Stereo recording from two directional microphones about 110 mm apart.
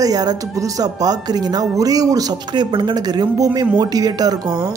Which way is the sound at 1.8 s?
35° right (ahead or behind).